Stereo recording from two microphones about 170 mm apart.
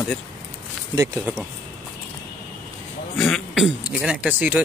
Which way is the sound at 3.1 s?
5° left (ahead or behind).